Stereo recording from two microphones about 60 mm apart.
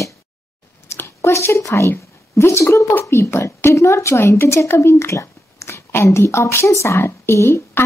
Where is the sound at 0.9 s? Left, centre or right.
Left.